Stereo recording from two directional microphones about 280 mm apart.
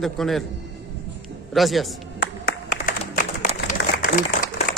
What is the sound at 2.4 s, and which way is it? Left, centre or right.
Applause, left.